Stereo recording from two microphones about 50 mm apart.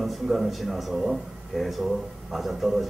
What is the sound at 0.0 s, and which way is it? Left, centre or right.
Speech, centre.